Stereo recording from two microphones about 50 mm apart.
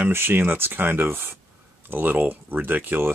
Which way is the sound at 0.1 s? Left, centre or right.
Right.